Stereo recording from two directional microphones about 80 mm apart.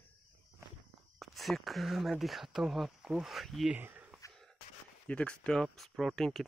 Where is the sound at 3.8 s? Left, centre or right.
Right.